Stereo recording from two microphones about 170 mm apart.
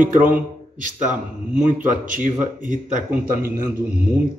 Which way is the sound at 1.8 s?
50° right (ahead or behind).